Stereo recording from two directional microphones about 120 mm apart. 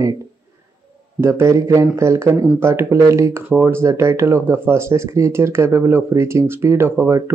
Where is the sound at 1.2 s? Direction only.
20° right (ahead or behind).